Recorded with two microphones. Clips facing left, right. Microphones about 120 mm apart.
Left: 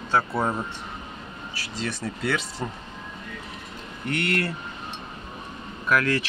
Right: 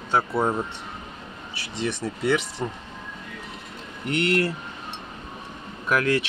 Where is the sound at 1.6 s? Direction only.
20° right (ahead or behind).